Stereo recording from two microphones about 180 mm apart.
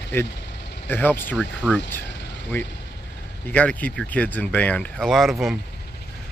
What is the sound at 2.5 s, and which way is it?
Speech, 10° left (ahead or behind).